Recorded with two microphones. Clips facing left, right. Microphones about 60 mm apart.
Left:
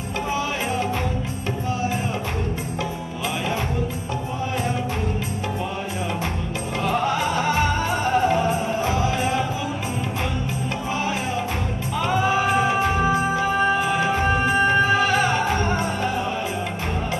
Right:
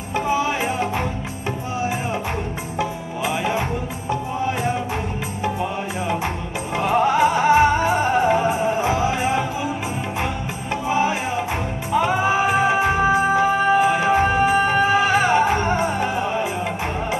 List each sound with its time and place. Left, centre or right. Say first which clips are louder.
6.8 s music: right 6 dB; right
10.9 s music: right 6 dB; centre
14.2 s music: right 2 dB; centre